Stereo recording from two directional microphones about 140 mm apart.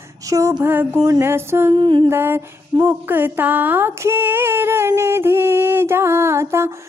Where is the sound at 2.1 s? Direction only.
15° right (ahead or behind).